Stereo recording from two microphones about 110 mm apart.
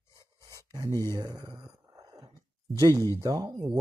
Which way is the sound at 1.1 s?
35° right (ahead or behind).